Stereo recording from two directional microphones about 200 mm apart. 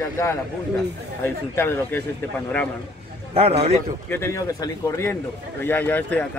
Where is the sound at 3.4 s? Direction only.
30° right (ahead or behind).